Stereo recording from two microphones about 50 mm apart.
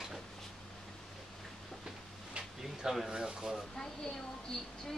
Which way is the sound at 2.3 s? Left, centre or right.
Centre.